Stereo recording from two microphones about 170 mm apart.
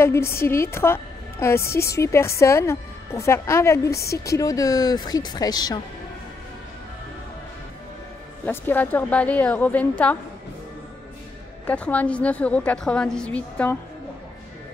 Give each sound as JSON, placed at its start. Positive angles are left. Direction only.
{"t": 0.0, "sound": "a woman's voice", "side_deg": 15}
{"t": 8.5, "sound": "a woman's voice", "side_deg": 10}
{"t": 11.6, "sound": "a woman's voice", "side_deg": 10}